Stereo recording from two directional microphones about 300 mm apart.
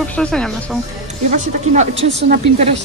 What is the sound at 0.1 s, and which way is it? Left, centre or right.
Speech, centre.